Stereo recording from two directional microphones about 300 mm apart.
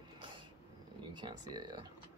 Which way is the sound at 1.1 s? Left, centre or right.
Centre.